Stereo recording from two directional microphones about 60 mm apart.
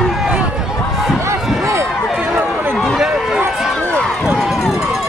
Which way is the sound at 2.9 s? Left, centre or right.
Centre.